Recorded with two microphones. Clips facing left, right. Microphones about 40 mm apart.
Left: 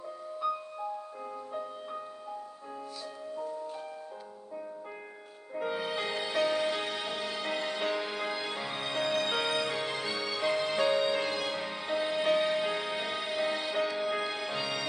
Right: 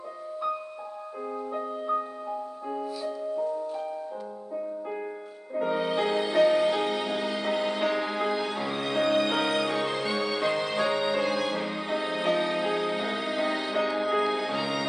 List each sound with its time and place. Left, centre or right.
1.5 s music: right
5.6 s music: centre
8.3 s music: centre